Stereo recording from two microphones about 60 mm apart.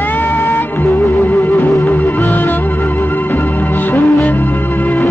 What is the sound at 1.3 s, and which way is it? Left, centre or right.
Music, left.